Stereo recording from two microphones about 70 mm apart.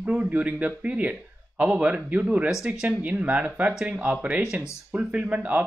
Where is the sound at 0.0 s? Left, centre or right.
Centre.